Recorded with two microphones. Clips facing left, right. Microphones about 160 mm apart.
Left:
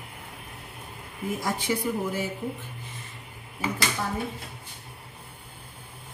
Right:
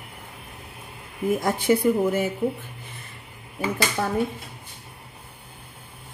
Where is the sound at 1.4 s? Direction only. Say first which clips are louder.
Right 7 dB; 50° right (ahead or behind).